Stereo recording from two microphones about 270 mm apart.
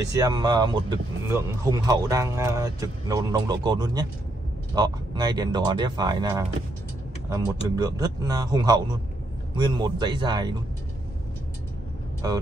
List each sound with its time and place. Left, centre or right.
0.0 s speech: centre
7.7 s speech: centre